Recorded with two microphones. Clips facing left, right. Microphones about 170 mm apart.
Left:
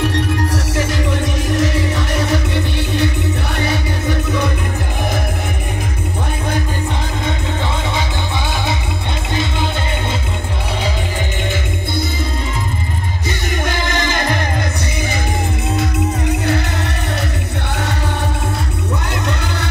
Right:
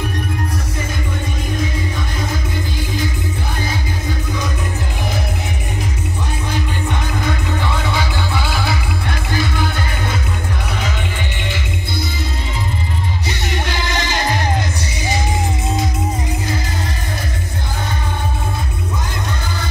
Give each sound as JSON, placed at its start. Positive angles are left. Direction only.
{"t": 1.5, "sound": "music", "side_deg": 80}
{"t": 9.3, "sound": "music", "side_deg": 25}
{"t": 13.5, "sound": "music", "side_deg": 50}
{"t": 15.7, "sound": "music", "side_deg": 65}